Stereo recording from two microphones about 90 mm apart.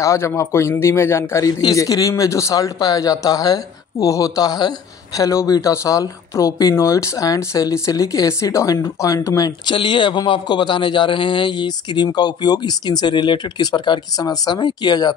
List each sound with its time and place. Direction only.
0.0 s a man's voice: 30° left (ahead or behind)
1.4 s speech: 50° left (ahead or behind)
9.7 s a man's voice: 65° left (ahead or behind)